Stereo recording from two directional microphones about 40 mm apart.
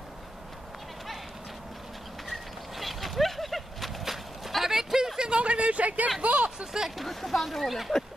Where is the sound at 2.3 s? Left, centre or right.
Centre; by 6.5 s right.